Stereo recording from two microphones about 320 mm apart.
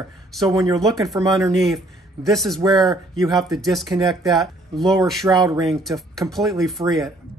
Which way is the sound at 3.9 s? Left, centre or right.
Centre.